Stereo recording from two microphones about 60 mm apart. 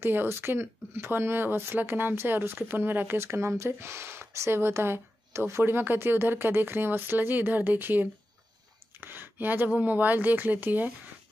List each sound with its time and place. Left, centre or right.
0.0 s speech: right
3.2 s speech: right